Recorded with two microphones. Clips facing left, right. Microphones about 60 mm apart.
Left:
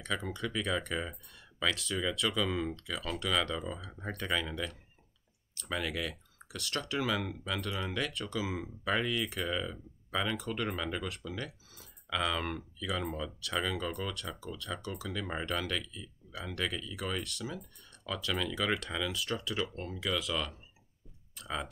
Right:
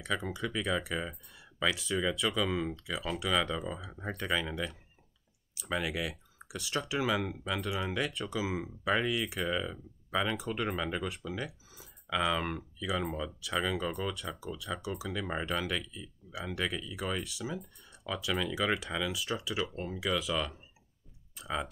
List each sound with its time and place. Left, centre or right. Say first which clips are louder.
0.0 s speech: right 2 dB; centre